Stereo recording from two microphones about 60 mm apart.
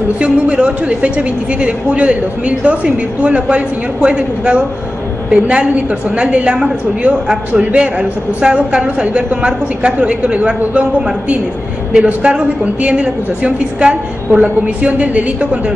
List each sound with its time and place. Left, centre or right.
0.2 s a woman's voice: right